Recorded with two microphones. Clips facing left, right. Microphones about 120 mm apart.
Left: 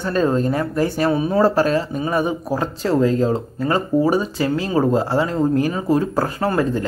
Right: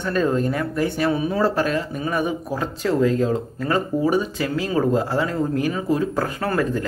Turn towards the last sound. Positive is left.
turn(degrees=30)  # may be behind; listen again after turning